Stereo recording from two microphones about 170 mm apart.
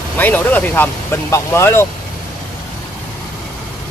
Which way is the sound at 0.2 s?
10° left (ahead or behind).